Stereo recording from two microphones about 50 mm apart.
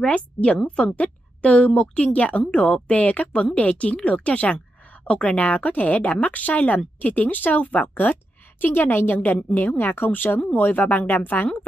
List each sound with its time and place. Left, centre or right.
0.0 s a woman's voice: left